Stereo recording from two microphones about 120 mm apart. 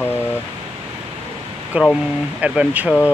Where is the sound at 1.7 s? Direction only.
10° right (ahead or behind).